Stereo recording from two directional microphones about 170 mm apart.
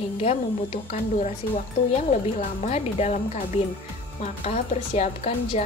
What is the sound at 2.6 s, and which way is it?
A woman's voice, 40° left (ahead or behind).